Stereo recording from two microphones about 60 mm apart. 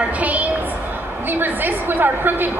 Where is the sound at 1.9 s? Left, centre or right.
Right.